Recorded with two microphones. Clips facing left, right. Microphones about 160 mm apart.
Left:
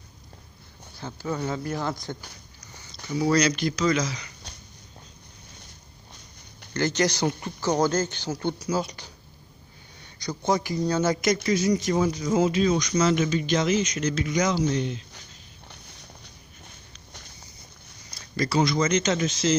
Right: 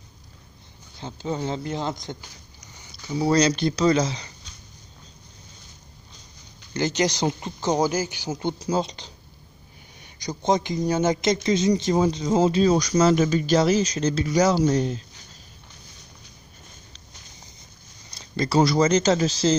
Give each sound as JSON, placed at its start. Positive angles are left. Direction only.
{"t": 0.9, "sound": "speech", "side_deg": -20}
{"t": 2.8, "sound": "a sound", "side_deg": -15}
{"t": 3.2, "sound": "speech", "side_deg": -30}
{"t": 6.7, "sound": "speech", "side_deg": -15}
{"t": 10.1, "sound": "speech", "side_deg": -15}
{"t": 18.1, "sound": "speech", "side_deg": -25}